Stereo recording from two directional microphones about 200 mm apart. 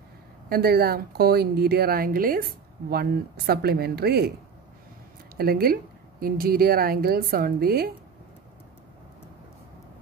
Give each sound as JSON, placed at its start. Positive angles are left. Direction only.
{"t": 0.5, "sound": "speech", "side_deg": -50}
{"t": 5.4, "sound": "speech", "side_deg": -50}